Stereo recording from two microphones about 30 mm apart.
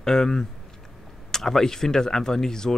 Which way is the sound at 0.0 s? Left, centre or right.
Centre.